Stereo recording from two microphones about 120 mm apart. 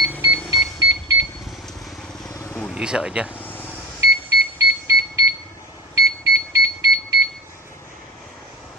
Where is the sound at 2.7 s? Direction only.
10° right (ahead or behind).